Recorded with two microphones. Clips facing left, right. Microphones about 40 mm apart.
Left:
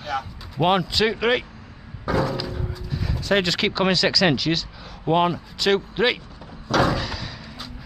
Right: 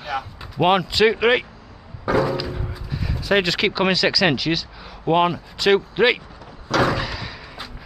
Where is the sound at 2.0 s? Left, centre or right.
Centre.